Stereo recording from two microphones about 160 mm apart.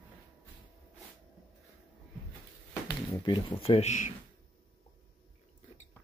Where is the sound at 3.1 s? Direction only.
30° left (ahead or behind).